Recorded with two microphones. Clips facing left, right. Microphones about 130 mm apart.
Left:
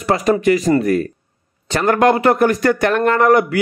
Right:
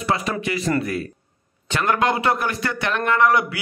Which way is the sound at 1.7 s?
40° left (ahead or behind).